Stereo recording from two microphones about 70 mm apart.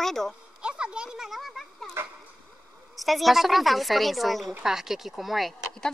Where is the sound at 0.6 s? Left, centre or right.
Centre.